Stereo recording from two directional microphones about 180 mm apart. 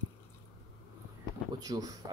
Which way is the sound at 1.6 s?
20° right (ahead or behind).